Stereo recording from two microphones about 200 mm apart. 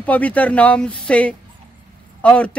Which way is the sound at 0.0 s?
5° left (ahead or behind).